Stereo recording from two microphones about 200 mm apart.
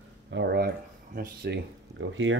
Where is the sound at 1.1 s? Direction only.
50° right (ahead or behind); by 2.3 s 70° right (ahead or behind).